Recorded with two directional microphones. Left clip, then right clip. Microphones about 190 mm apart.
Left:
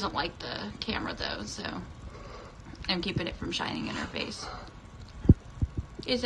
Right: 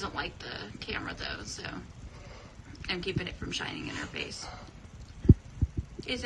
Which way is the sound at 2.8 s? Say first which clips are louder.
Left 3 dB; centre (ahead or behind).